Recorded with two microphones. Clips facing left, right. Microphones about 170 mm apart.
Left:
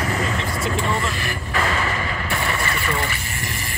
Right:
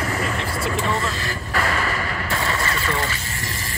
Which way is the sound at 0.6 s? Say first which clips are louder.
Even; centre (ahead or behind).